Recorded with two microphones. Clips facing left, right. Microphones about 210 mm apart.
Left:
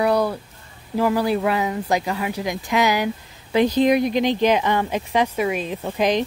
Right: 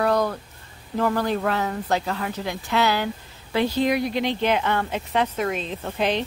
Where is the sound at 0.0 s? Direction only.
10° left (ahead or behind).